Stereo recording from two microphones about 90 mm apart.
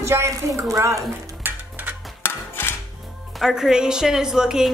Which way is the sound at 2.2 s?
25° left (ahead or behind).